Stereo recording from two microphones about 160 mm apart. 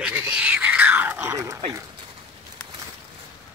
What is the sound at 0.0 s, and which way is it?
Dog, 10° right (ahead or behind).